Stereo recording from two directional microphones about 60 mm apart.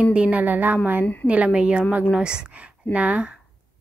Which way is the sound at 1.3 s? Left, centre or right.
Centre.